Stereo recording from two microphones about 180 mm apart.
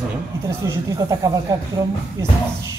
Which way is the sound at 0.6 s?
20° right (ahead or behind).